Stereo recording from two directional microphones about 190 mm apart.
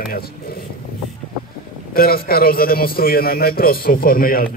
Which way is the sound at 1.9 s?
50° left (ahead or behind).